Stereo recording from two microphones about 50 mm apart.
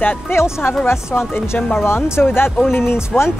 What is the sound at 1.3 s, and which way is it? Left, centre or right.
Speech, left.